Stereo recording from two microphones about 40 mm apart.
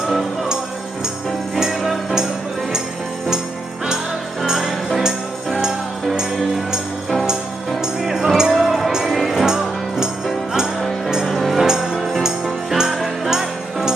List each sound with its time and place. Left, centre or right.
1.7 s music: centre
4.5 s music: centre
5.0 s music: centre
8.0 s music: centre
11.2 s music: centre
12.9 s jingle bell: centre
13.3 s music: centre